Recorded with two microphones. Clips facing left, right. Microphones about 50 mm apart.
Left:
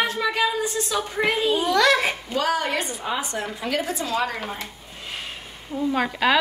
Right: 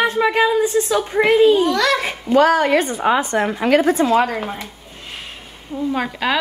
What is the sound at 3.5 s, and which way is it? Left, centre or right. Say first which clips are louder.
Speech: right 12 dB; right.